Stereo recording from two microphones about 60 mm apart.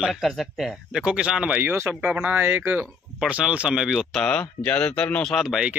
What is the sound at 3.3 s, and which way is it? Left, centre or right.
Speech, centre.